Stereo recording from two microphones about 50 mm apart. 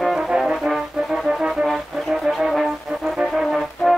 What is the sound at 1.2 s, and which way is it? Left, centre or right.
Music, centre.